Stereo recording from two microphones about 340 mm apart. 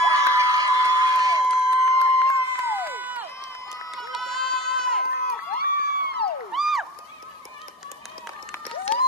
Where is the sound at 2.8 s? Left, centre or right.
Centre.